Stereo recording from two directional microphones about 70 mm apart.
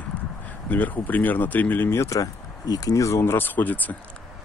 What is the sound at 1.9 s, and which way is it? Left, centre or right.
Speech, left.